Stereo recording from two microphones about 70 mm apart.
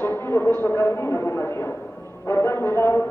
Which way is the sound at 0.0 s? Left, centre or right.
Left.